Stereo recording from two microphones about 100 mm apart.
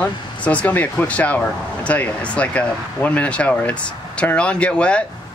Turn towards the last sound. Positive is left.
turn(degrees=10)  # may be behind; listen again after turning